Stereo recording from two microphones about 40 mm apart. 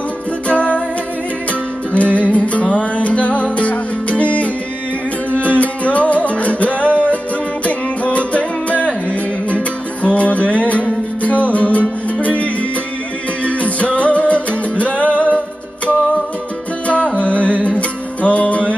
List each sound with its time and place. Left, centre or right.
0.5 s music: left
2.0 s music: left
10.0 s music: left
16.8 s music: left